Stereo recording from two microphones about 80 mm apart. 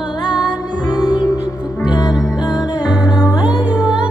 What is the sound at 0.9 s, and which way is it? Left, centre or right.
Music, left.